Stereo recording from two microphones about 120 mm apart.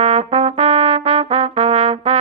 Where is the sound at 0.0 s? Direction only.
55° right (ahead or behind).